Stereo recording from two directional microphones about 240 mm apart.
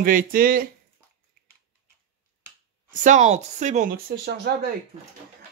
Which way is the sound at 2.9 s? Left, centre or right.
Right.